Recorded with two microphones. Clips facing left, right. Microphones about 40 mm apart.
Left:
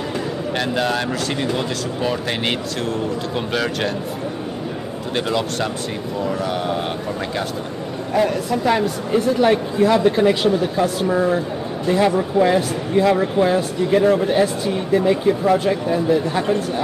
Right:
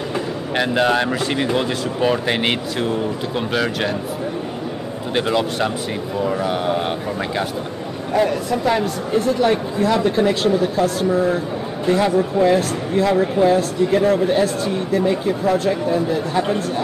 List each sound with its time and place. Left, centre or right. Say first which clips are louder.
0.1 s speech: right 2 dB; centre
5.1 s speech: right 2 dB; centre